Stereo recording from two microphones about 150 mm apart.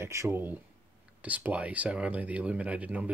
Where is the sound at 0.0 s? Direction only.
20° right (ahead or behind).